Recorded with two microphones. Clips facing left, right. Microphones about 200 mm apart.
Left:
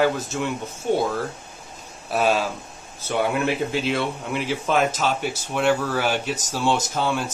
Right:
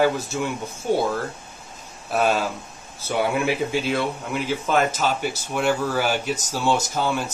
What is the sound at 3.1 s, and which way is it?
A man's voice, 5° right (ahead or behind).